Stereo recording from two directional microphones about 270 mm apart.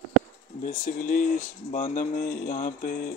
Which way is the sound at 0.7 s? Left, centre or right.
Left.